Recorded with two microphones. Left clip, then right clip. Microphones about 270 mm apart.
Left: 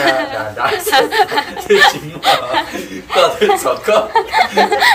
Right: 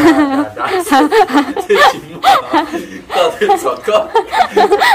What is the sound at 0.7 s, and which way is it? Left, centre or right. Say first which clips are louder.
Speech: right 2 dB; right.